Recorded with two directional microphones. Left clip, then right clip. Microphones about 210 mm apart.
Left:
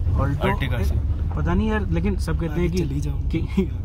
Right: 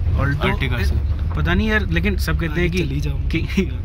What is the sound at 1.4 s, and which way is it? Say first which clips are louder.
Speech: right 5 dB; 15° right (ahead or behind).